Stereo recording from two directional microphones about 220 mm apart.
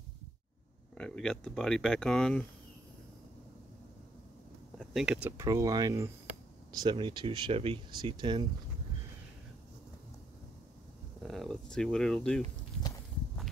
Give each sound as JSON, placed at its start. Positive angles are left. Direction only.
{"t": 0.9, "sound": "speech", "side_deg": 5}
{"t": 4.7, "sound": "speech", "side_deg": -5}
{"t": 11.2, "sound": "speech", "side_deg": 0}